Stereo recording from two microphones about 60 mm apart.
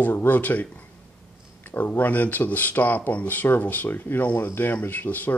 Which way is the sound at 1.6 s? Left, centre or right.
Left.